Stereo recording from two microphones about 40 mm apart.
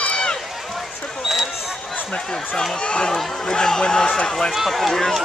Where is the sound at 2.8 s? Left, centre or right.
Left.